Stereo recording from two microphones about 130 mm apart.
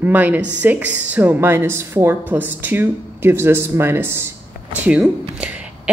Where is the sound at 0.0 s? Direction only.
15° right (ahead or behind).